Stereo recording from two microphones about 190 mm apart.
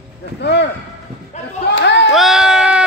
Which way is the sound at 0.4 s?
65° left (ahead or behind).